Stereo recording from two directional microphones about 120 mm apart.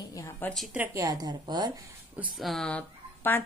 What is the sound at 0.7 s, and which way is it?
Speech, 15° right (ahead or behind).